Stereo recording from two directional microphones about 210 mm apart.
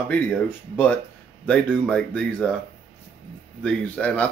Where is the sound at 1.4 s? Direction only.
5° left (ahead or behind).